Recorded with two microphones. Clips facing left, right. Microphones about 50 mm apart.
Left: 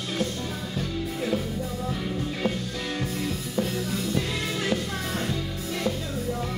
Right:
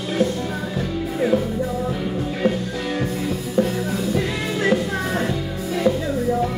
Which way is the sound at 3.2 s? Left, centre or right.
Centre.